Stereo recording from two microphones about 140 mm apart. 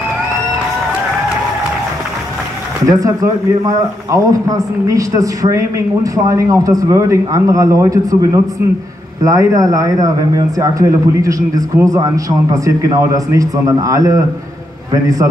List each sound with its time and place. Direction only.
2.8 s speech: 25° right (ahead or behind)